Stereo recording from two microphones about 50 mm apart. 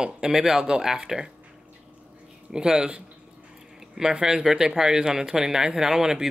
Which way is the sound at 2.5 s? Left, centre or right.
Centre.